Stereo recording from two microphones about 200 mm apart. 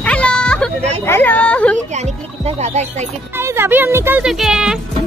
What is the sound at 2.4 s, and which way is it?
Speech, 35° right (ahead or behind).